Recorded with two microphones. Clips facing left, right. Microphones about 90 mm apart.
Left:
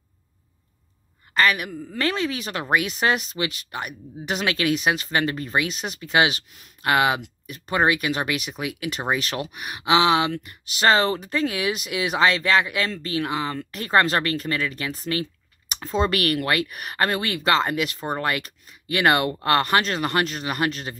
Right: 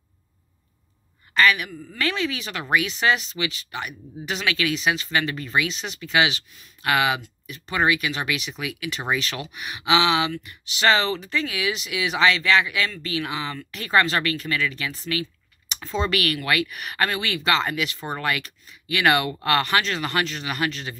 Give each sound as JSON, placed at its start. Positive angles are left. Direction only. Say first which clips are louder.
{"t": 1.3, "sound": "a woman's voice", "louder": "right 1 dB", "side_deg": 40}
{"t": 6.8, "sound": "speech", "louder": "left 2 dB", "side_deg": 40}